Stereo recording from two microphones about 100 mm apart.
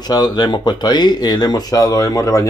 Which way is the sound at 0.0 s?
45° left (ahead or behind).